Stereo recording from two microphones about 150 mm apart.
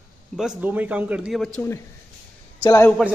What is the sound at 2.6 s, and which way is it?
Speech, 20° left (ahead or behind).